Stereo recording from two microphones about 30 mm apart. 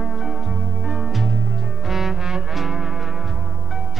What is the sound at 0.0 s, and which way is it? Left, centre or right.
Music, centre.